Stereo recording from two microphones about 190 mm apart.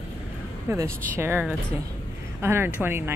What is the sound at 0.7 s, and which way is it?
A woman's voice, 15° right (ahead or behind).